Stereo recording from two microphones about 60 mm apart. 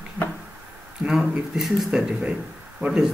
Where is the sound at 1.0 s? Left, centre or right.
Centre.